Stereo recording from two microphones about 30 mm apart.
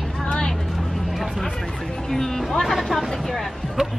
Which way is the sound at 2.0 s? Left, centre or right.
Centre.